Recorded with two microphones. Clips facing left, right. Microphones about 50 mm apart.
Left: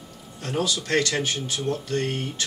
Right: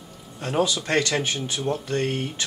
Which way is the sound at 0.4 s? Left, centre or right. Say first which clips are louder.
Right 3 dB; right.